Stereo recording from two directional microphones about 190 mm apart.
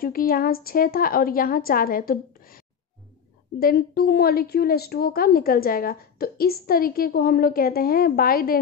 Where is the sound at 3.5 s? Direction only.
55° left (ahead or behind).